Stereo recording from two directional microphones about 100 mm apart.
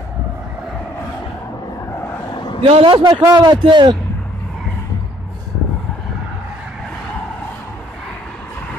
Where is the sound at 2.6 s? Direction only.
70° right (ahead or behind).